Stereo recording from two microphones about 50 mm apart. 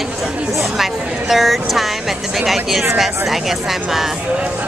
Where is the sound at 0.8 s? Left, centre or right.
Centre.